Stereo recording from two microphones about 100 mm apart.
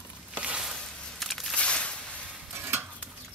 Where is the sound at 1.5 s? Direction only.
10° left (ahead or behind).